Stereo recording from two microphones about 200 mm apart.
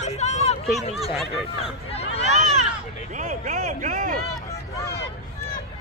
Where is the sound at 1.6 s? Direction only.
30° left (ahead or behind).